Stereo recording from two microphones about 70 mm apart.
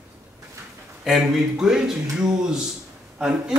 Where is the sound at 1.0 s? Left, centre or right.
Centre.